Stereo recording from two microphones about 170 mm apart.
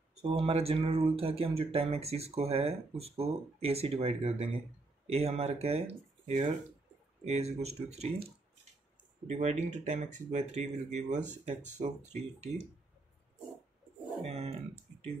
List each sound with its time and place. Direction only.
0.2 s speech: 35° right (ahead or behind)
9.3 s speech: 40° right (ahead or behind)
14.2 s speech: 40° right (ahead or behind)